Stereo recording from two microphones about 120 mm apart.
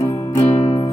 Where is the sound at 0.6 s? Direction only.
50° left (ahead or behind).